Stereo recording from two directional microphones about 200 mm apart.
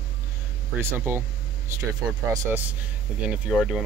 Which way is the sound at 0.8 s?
10° right (ahead or behind).